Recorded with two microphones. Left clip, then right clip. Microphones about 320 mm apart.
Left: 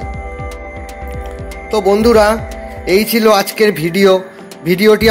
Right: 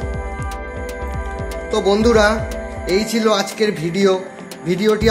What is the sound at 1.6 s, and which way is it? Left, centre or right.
Speech, centre.